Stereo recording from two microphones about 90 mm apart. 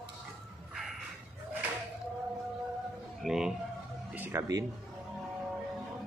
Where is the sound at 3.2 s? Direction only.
5° right (ahead or behind).